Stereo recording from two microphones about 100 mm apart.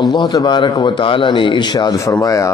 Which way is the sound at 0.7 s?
55° left (ahead or behind).